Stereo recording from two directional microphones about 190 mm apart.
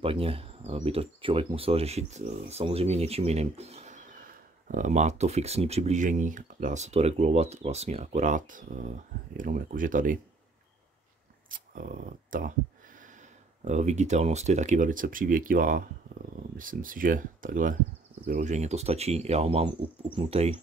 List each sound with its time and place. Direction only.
0.0 s speech: 30° right (ahead or behind); by 10.1 s 45° right (ahead or behind)
11.5 s speech: 45° right (ahead or behind)
13.7 s speech: 35° right (ahead or behind)